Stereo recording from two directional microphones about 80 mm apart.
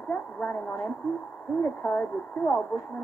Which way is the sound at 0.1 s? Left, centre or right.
Left.